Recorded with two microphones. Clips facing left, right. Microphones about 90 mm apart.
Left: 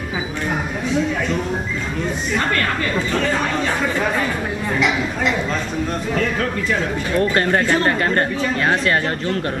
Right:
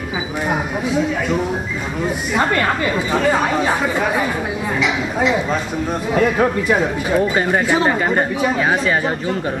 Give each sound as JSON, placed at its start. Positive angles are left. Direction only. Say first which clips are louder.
{"t": 2.3, "sound": "speech", "louder": "right 4 dB", "side_deg": -15}
{"t": 6.1, "sound": "speech", "louder": "right 8 dB", "side_deg": -15}